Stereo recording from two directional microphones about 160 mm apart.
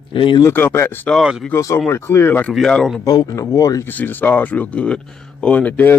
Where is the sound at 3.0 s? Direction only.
25° left (ahead or behind).